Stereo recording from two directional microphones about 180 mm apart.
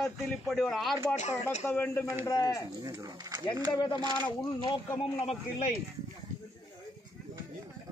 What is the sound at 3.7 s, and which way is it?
Speech, 25° left (ahead or behind).